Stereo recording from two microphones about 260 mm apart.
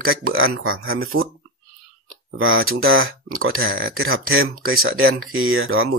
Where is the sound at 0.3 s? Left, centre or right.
Right.